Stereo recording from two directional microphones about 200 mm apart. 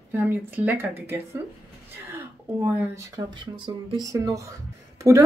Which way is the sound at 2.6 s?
15° right (ahead or behind).